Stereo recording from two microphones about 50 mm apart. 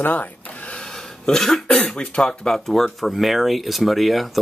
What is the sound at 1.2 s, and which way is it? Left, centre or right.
Speech, centre.